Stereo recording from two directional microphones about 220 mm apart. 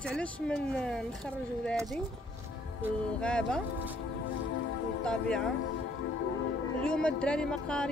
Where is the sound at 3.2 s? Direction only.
5° left (ahead or behind).